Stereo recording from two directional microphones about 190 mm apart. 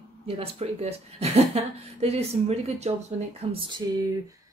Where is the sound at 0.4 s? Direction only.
30° right (ahead or behind).